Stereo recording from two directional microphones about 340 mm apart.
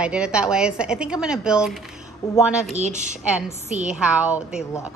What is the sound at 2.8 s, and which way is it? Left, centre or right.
Speech, right.